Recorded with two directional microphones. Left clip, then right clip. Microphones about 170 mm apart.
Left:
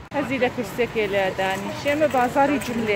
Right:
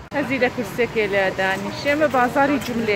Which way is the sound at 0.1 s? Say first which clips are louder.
Right 2 dB; 5° left (ahead or behind).